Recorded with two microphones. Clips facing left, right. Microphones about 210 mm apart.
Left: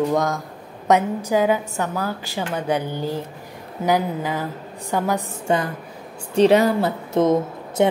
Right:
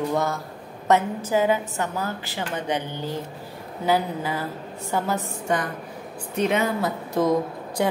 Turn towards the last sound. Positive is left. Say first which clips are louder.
# left 4 dB
turn(degrees=20)  # may be behind; listen again after turning